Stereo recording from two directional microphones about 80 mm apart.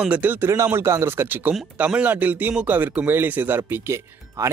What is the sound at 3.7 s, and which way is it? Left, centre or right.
Speech, right.